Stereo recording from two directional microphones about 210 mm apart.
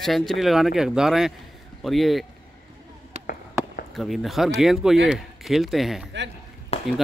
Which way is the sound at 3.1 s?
30° right (ahead or behind).